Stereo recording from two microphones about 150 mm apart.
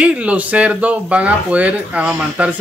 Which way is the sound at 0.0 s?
10° right (ahead or behind).